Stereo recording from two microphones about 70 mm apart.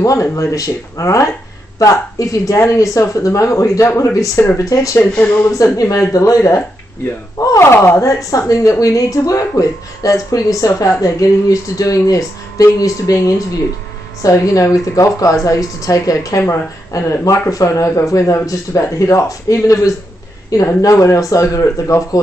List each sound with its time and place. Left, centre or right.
0.0 s a woman's voice: left